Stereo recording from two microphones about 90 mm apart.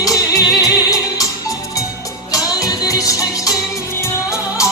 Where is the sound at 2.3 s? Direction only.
40° left (ahead or behind).